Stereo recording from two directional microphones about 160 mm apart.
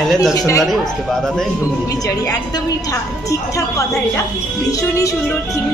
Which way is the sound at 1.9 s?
25° left (ahead or behind).